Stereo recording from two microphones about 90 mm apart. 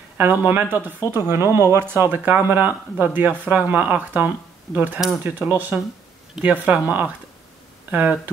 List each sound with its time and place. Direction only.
0.2 s speech: 20° right (ahead or behind)